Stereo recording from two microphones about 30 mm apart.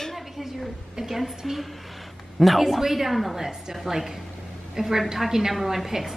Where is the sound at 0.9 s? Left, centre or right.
Centre.